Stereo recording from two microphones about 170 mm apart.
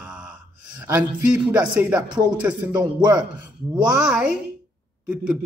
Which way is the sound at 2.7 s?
25° right (ahead or behind).